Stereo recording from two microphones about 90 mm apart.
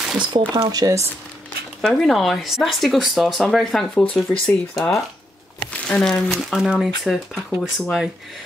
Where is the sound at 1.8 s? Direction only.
5° left (ahead or behind).